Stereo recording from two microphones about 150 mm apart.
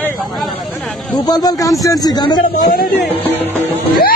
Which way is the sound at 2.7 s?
70° left (ahead or behind).